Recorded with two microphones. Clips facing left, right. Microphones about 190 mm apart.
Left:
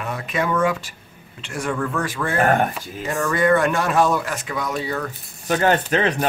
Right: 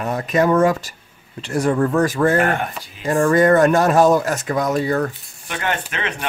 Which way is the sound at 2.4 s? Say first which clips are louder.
Left 1 dB; 45° left (ahead or behind).